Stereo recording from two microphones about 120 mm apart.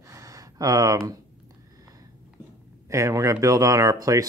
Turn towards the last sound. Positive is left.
turn(degrees=-30)  # may be behind; listen again after turning